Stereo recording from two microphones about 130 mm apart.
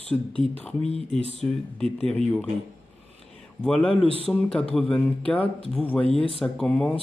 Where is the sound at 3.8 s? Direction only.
45° left (ahead or behind).